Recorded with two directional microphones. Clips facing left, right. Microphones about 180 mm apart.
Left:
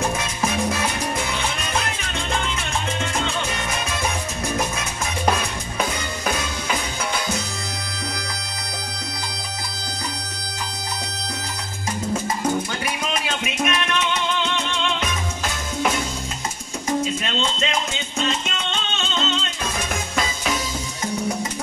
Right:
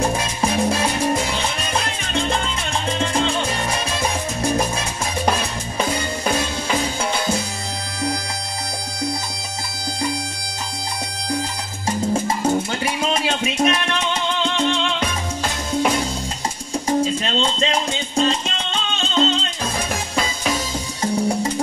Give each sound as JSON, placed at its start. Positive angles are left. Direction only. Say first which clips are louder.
{"t": 0.2, "sound": "music", "louder": "right 3 dB", "side_deg": -30}
{"t": 3.0, "sound": "salsa music", "louder": "right 5 dB", "side_deg": -35}
{"t": 12.1, "sound": "music", "louder": "right 3 dB", "side_deg": -30}
{"t": 17.0, "sound": "music", "louder": "right 4 dB", "side_deg": -35}